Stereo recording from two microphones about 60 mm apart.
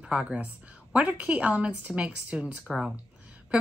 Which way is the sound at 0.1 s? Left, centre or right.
Centre.